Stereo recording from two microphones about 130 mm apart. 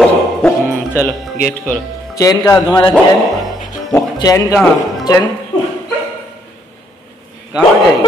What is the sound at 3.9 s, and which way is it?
Speech, 25° left (ahead or behind).